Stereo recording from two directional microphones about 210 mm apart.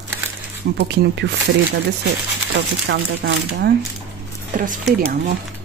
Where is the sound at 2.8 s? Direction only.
50° right (ahead or behind).